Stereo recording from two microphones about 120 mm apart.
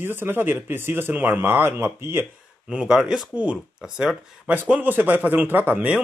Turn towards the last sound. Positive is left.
turn(degrees=-15)  # may be behind; listen again after turning